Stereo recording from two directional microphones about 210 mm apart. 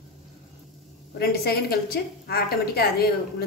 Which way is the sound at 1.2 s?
45° left (ahead or behind).